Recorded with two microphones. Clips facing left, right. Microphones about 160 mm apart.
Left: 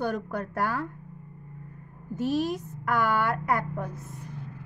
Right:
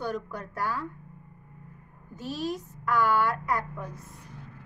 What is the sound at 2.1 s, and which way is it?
A woman's voice, 55° left (ahead or behind).